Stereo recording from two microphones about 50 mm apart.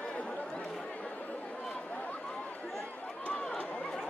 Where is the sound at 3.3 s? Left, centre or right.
Left.